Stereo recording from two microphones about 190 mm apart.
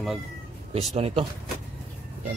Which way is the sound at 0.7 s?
35° right (ahead or behind).